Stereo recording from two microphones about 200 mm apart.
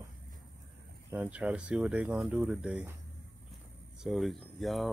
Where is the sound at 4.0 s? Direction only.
Centre (ahead or behind).